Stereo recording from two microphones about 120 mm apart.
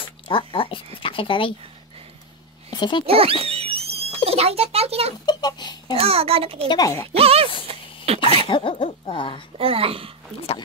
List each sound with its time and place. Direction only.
0.3 s speech: 45° left (ahead or behind)
2.7 s speech: 40° left (ahead or behind)
3.1 s a child's voice: 55° right (ahead or behind)
3.4 s a sound: 55° right (ahead or behind)
5.2 s a sound: 35° left (ahead or behind)
5.9 s a child's voice: 55° right (ahead or behind)
6.7 s speech: 30° left (ahead or behind)
7.1 s a sound: 55° right (ahead or behind)
8.5 s speech: 45° left (ahead or behind)
9.6 s a child's voice: 50° right (ahead or behind)